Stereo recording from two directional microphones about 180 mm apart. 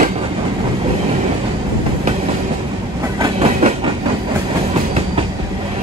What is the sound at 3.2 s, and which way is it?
Train, 35° right (ahead or behind).